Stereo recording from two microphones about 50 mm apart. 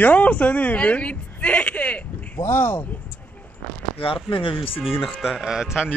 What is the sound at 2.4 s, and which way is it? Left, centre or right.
Speech, left.